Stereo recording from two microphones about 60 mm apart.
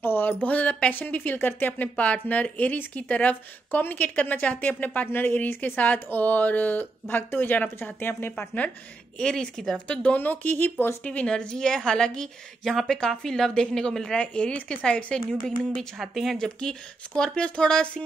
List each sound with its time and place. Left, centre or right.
0.0 s speech: left
9.2 s a woman's voice: centre
9.8 s speech: left
11.1 s a woman's voice: centre
16.4 s a woman's voice: centre